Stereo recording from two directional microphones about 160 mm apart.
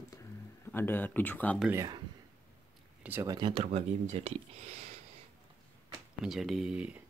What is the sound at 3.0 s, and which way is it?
Speech, 15° right (ahead or behind).